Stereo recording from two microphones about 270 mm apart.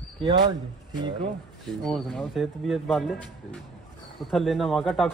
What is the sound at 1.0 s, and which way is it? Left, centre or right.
Speech, centre.